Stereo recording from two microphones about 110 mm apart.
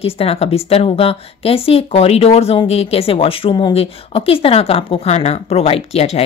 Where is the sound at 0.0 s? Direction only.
65° left (ahead or behind).